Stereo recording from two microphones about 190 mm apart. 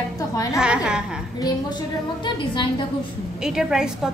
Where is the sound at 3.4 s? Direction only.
5° right (ahead or behind).